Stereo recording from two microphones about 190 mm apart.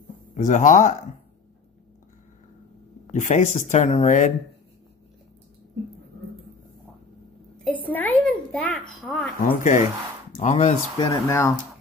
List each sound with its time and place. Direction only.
0.3 s speech: 40° left (ahead or behind)
3.1 s speech: 40° left (ahead or behind)
7.5 s a sound: 5° left (ahead or behind)
9.0 s speech: centre (ahead or behind)
9.5 s speech: 40° left (ahead or behind)
11.2 s speech: 15° left (ahead or behind)